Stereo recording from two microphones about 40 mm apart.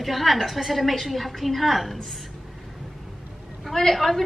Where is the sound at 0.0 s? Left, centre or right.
Centre.